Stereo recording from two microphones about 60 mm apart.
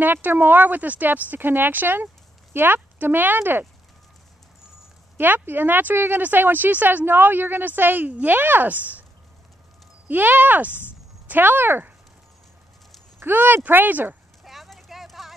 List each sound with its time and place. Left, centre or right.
0.0 s speech: right
5.1 s speech: right
10.0 s speech: right
13.2 s speech: right
14.4 s a sound: centre